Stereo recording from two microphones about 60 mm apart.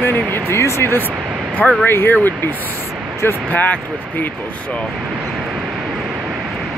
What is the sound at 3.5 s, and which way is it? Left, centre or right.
Speech, left.